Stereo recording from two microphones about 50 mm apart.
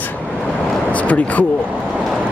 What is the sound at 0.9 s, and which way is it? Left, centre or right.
Speech, left.